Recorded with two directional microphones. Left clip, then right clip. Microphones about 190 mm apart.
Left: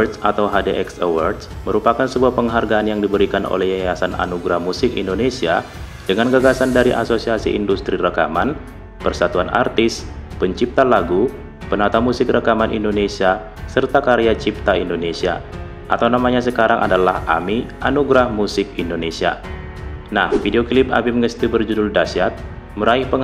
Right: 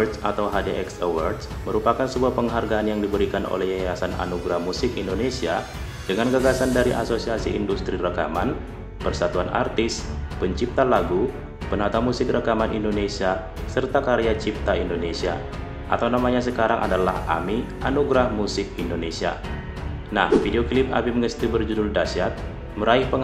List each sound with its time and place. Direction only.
0.0 s speech: 30° left (ahead or behind)